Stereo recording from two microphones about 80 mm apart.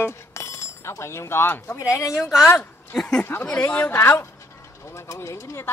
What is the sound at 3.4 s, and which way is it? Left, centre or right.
Speech, centre.